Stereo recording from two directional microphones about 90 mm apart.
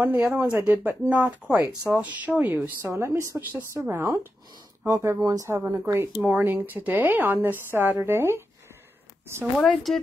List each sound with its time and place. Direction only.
0.0 s speech: 20° right (ahead or behind)
2.9 s speech: 30° right (ahead or behind)
5.7 s speech: 30° right (ahead or behind)
9.6 s speech: centre (ahead or behind)